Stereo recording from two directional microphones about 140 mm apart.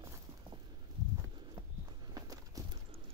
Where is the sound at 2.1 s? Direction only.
25° right (ahead or behind).